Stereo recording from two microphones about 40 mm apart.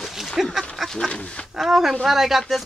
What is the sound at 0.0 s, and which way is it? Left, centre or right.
Duck, centre.